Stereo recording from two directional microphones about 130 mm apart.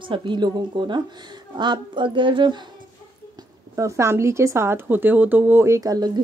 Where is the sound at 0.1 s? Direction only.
40° right (ahead or behind).